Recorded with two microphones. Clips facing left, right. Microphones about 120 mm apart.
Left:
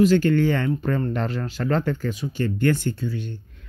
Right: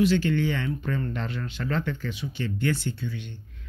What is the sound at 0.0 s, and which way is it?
Speech, 45° left (ahead or behind).